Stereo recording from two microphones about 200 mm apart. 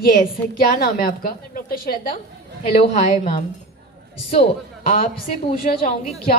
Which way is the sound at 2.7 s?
30° left (ahead or behind).